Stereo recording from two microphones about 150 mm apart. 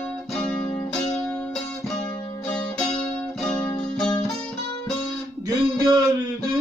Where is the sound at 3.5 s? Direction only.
5° left (ahead or behind).